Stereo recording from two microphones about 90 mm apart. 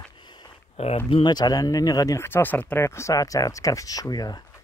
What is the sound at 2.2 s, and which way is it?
Speech, 25° left (ahead or behind).